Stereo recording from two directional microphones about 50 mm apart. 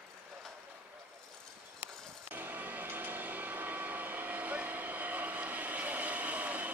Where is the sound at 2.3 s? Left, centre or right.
Right.